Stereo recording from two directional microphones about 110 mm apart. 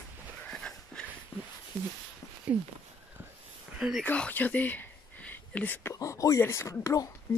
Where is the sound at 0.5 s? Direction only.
5° left (ahead or behind).